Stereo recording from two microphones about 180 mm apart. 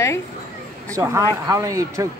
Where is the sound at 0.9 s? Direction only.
15° right (ahead or behind).